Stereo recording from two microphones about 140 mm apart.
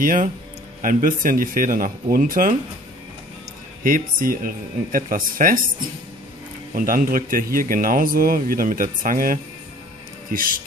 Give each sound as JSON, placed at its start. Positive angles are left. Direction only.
{"t": 0.0, "sound": "speech", "side_deg": -75}
{"t": 3.8, "sound": "speech", "side_deg": -85}
{"t": 6.7, "sound": "speech", "side_deg": -85}